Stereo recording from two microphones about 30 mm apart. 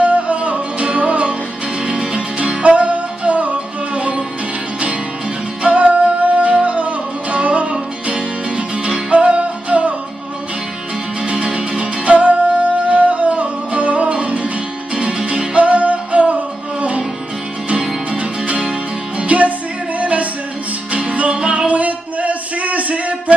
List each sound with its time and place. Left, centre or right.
0.0 s music: right
5.6 s music: right
9.1 s music: right
11.2 s music: right
15.5 s music: right
19.1 s music: right